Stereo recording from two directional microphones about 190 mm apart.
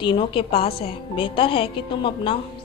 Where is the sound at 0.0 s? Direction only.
25° left (ahead or behind).